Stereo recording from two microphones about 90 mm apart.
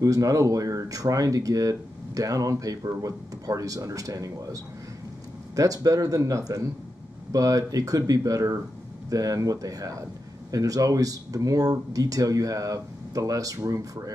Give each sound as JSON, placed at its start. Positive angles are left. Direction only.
{"t": 0.0, "sound": "speech", "side_deg": -40}
{"t": 5.6, "sound": "speech", "side_deg": -40}